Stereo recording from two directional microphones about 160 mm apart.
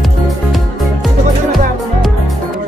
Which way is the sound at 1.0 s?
Centre (ahead or behind).